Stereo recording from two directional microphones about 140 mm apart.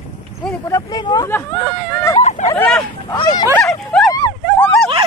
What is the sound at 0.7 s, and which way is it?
Speech, 30° left (ahead or behind).